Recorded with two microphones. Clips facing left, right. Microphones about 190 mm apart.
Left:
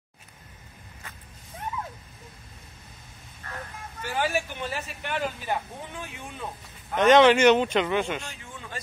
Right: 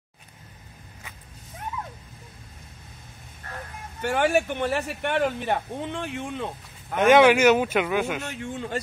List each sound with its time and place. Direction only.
4.0 s speech: 65° right (ahead or behind)
7.0 s speech: 10° right (ahead or behind)
8.2 s a man's voice: 65° right (ahead or behind)